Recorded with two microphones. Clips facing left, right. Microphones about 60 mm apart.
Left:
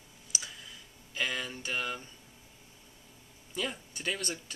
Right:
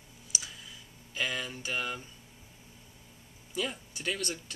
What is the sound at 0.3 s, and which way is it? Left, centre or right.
Clicking, centre.